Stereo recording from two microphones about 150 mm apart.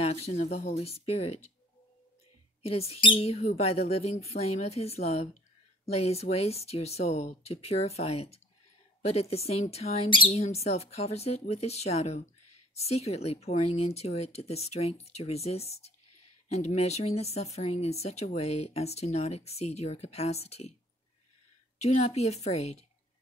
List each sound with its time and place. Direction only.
0.0 s speech: 45° left (ahead or behind)
2.6 s speech: 40° left (ahead or behind)
21.7 s speech: 50° left (ahead or behind)